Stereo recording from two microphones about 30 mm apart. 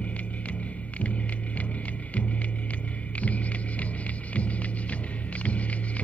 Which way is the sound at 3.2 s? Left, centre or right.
Left.